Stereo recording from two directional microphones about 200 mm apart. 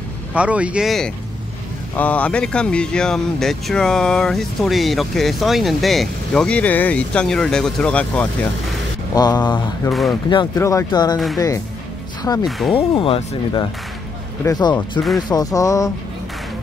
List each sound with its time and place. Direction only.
0.3 s speech: 5° right (ahead or behind)
9.1 s speech: 20° left (ahead or behind)
11.3 s a sound: 15° left (ahead or behind)
12.2 s speech: 20° left (ahead or behind)
12.4 s speech: centre (ahead or behind)
12.7 s speech: 25° left (ahead or behind)
15.2 s a sound: 20° left (ahead or behind)